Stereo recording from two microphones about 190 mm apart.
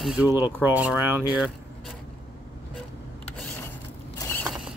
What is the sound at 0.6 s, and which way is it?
Speech, 5° right (ahead or behind).